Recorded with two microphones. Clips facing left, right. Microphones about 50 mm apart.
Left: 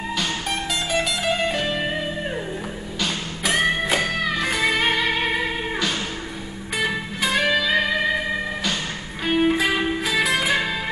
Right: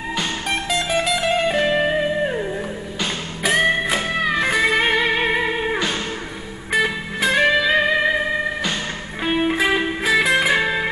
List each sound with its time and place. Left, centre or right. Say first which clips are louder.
0.8 s music: right 1 dB; centre
3.4 s music: right 3 dB; centre
4.0 s music: right 3 dB; right
9.2 s music: even; centre